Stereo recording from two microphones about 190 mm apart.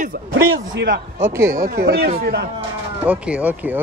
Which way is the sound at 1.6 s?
50° right (ahead or behind).